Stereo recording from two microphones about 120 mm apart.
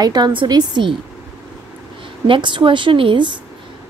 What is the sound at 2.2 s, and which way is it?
A woman's voice, 45° right (ahead or behind).